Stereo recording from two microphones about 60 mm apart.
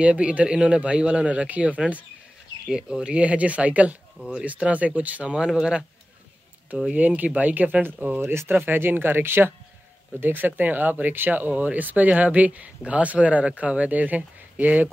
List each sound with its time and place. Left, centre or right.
0.0 s speech: right
2.6 s speech: centre
5.5 s speech: centre
6.9 s speech: right
8.2 s speech: right